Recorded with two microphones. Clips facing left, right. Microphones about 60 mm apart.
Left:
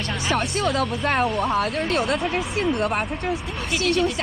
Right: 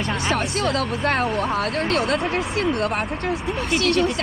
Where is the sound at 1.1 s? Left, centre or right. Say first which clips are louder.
Left 2 dB; centre.